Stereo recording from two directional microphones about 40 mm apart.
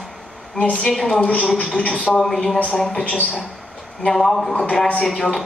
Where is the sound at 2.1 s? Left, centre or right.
Centre.